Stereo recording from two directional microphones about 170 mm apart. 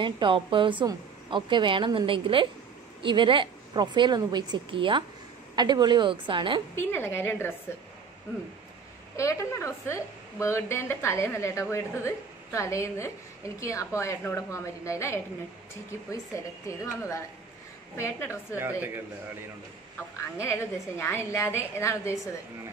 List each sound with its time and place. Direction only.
0.0 s speech: 30° right (ahead or behind)
6.7 s a woman's voice: 15° left (ahead or behind)
9.1 s a woman's voice: 15° left (ahead or behind)
18.6 s a man's voice: 10° right (ahead or behind)
20.2 s a woman's voice: 15° left (ahead or behind)